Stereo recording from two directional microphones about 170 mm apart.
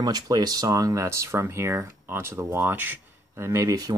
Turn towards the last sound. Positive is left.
turn(degrees=-20)  # may be behind; listen again after turning